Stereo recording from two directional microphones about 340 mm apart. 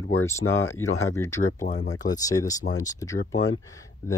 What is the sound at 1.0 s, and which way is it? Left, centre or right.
Speech, centre.